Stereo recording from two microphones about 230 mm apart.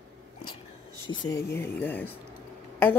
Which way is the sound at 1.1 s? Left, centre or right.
Centre.